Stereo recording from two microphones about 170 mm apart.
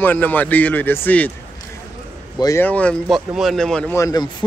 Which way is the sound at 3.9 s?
20° left (ahead or behind).